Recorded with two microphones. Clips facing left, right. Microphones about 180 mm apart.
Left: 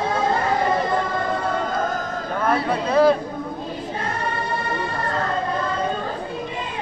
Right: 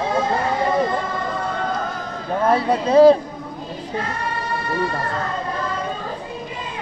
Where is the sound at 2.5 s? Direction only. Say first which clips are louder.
Right 4 dB; 25° right (ahead or behind).